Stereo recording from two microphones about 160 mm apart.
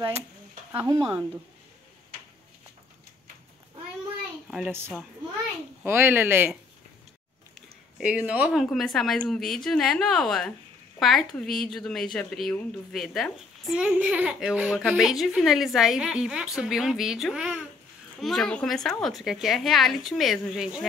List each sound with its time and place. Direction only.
0.7 s speech: 20° right (ahead or behind)
4.5 s speech: 5° right (ahead or behind)
5.9 s speech: 15° right (ahead or behind)
8.0 s a woman's voice: 5° right (ahead or behind)